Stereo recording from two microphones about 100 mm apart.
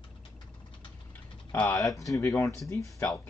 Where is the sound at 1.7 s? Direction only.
35° left (ahead or behind).